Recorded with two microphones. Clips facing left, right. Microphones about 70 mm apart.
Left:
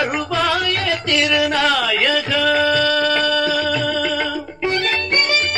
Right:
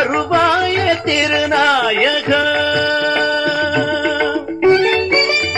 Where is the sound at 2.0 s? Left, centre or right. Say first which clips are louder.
Right 4 dB; right.